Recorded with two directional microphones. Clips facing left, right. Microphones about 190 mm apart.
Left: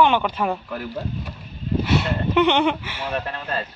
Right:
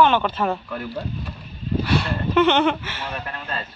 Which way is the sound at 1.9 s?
20° left (ahead or behind).